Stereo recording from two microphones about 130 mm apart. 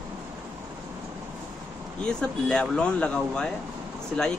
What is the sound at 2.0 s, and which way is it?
Speech, 5° left (ahead or behind).